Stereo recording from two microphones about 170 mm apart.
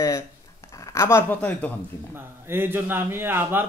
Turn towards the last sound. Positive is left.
turn(degrees=-15)  # may be behind; listen again after turning